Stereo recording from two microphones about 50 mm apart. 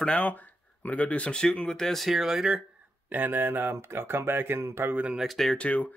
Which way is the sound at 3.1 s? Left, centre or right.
Right.